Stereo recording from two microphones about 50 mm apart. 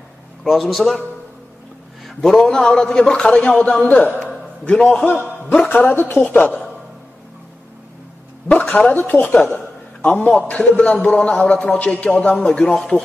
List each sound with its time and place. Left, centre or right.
0.4 s a man's voice: centre
2.0 s a man's voice: centre; by 4.1 s left
5.7 s speech: left
8.5 s speech: left
10.0 s a man's voice: left